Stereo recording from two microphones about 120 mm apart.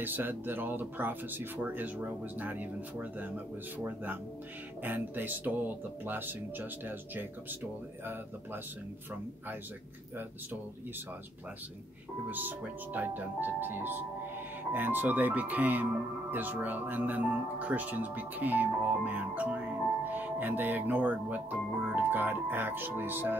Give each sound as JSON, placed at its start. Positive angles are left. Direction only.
{"t": 0.0, "sound": "speech", "side_deg": -15}
{"t": 12.3, "sound": "speech", "side_deg": -15}